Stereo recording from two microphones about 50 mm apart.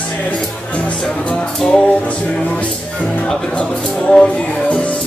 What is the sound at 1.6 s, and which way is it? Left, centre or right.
Speech, centre.